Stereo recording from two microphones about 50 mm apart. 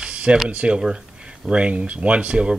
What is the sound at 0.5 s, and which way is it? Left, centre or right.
Speech, right.